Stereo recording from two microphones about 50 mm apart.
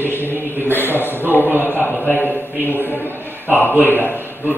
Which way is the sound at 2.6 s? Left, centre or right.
Left.